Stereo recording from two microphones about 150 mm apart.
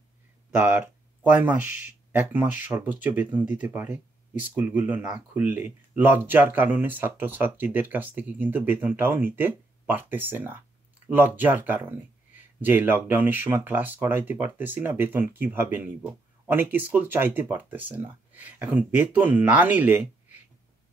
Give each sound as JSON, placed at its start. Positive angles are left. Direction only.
{"t": 0.6, "sound": "speech", "side_deg": -10}
{"t": 1.7, "sound": "speech", "side_deg": 55}
{"t": 2.1, "sound": "speech", "side_deg": -10}